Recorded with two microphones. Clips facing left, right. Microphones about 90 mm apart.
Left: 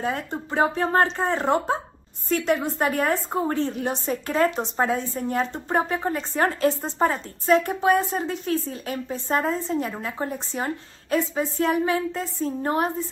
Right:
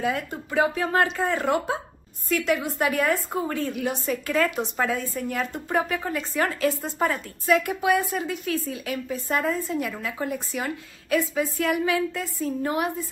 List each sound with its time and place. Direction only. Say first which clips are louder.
0.0 s a woman's voice: even; 35° left (ahead or behind)